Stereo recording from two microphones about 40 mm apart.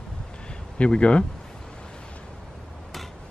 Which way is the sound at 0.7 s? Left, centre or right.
Left.